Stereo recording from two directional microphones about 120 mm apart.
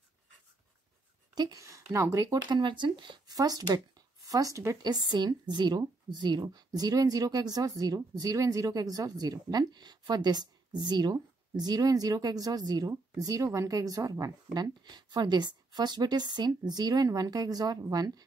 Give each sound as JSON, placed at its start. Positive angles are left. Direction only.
{"t": 1.3, "sound": "speech", "side_deg": -30}
{"t": 2.6, "sound": "speech", "side_deg": -40}
{"t": 5.1, "sound": "a woman's voice", "side_deg": -35}